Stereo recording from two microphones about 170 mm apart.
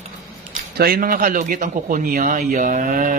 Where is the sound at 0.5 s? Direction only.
55° right (ahead or behind).